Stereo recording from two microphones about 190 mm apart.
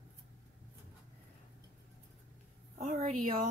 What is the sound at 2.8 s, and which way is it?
Speech, 35° right (ahead or behind).